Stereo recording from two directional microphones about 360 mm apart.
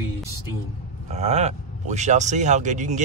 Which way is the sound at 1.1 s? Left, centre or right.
Centre.